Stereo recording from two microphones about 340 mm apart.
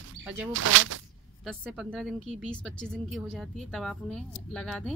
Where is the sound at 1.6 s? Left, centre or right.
Centre.